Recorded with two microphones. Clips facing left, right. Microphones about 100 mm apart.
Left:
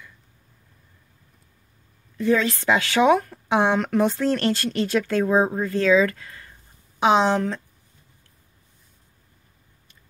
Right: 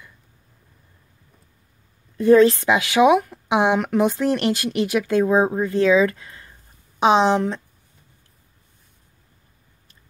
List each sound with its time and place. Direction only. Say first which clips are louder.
2.1 s a woman's voice: right 8 dB; 45° right (ahead or behind)
2.6 s speech: right 3 dB; 15° right (ahead or behind)